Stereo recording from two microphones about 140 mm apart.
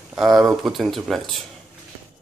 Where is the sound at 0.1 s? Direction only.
Centre (ahead or behind).